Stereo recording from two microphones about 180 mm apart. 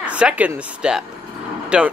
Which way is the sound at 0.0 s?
5° right (ahead or behind).